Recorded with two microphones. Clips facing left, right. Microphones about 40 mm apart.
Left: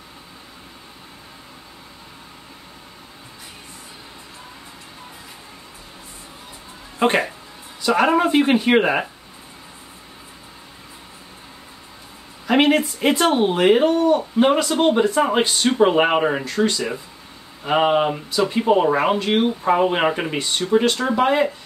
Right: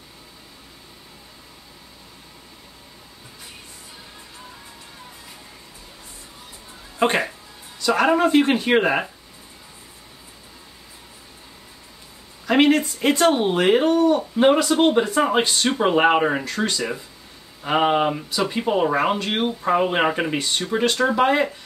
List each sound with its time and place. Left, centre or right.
7.0 s speech: centre
12.4 s speech: centre